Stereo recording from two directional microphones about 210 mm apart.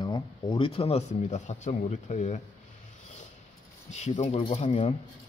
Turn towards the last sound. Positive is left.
turn(degrees=30)  # may be behind; listen again after turning